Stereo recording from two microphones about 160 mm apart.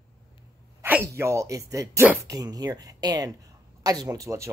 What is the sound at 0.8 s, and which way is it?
Speech, 15° right (ahead or behind).